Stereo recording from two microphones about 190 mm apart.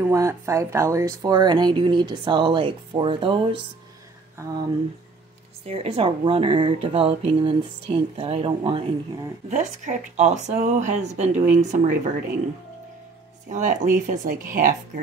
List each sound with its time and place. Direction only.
0.0 s speech: 15° right (ahead or behind)
4.4 s speech: 15° right (ahead or behind)
5.7 s speech: 30° right (ahead or behind)
9.5 s speech: 40° right (ahead or behind)
13.5 s speech: 40° right (ahead or behind)